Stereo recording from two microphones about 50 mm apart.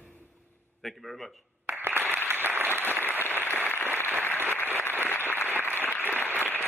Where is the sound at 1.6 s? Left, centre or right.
Right.